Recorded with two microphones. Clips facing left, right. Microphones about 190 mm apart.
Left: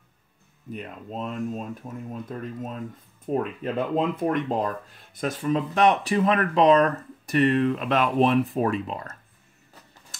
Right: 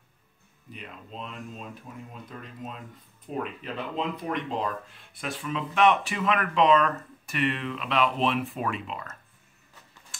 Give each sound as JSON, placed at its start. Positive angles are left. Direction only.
{"t": 0.7, "sound": "speech", "side_deg": 45}